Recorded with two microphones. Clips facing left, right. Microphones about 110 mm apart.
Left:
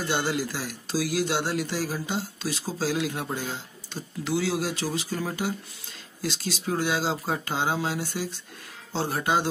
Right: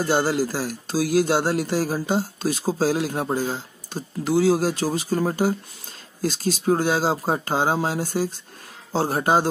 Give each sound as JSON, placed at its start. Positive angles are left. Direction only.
{"t": 0.0, "sound": "speech", "side_deg": -40}